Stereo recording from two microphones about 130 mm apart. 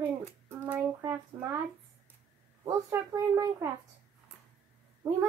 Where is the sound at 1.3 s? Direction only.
20° right (ahead or behind).